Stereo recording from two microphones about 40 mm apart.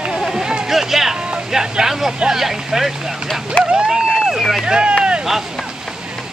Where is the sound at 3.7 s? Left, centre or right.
Right.